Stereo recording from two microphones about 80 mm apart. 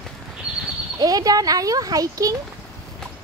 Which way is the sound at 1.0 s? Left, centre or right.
Right.